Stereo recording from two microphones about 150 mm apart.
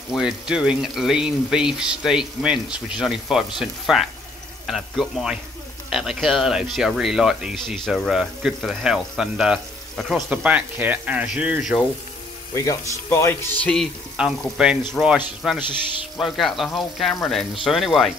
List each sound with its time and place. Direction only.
0.1 s speech: centre (ahead or behind)
12.5 s speech: 20° left (ahead or behind)
14.2 s speech: 5° right (ahead or behind)